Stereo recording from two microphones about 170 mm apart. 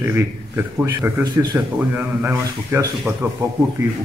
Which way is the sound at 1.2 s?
25° right (ahead or behind).